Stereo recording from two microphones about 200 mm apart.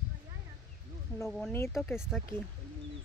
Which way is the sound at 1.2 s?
Centre (ahead or behind).